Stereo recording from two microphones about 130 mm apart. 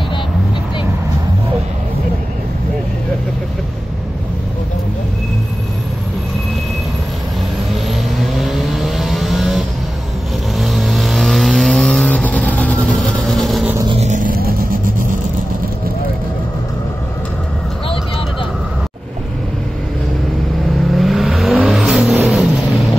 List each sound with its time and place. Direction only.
8.2 s vehicle: centre (ahead or behind)
10.6 s vehicle: centre (ahead or behind)
13.9 s vehicle: 70° right (ahead or behind); by 15.1 s 90° right
20.9 s vehicle: centre (ahead or behind)